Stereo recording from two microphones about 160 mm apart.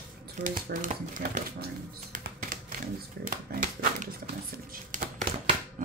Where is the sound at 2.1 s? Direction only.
60° right (ahead or behind).